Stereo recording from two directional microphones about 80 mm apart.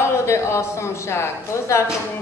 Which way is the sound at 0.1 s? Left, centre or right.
Left.